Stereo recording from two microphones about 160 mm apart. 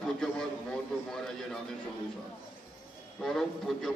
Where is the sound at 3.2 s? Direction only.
Centre (ahead or behind).